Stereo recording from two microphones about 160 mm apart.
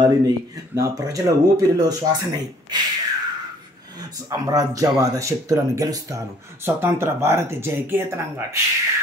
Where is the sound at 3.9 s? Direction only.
20° right (ahead or behind).